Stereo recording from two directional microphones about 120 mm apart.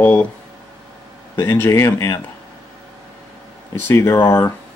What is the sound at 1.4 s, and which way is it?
Speech, 20° left (ahead or behind).